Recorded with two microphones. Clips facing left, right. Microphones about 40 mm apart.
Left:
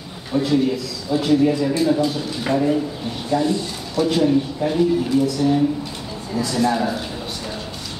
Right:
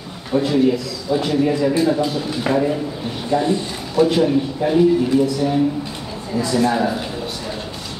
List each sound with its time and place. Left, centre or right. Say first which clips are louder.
0.3 s speech: right 2 dB; centre
3.3 s speech: right 1 dB; right
3.9 s speech: right 2 dB; centre